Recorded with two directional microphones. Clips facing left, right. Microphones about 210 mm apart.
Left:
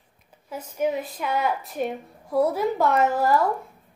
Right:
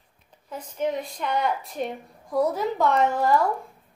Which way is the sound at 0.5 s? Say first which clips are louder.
Left 2 dB; 5° left (ahead or behind).